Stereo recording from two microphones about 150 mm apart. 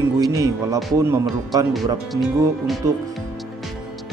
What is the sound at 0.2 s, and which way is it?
Music, 20° right (ahead or behind).